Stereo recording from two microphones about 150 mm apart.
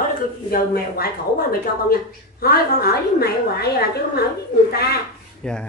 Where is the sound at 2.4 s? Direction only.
90° left.